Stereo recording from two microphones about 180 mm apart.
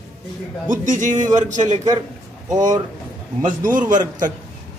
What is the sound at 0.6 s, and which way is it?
A man's voice, 45° right (ahead or behind).